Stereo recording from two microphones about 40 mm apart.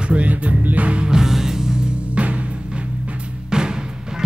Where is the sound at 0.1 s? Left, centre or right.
Right.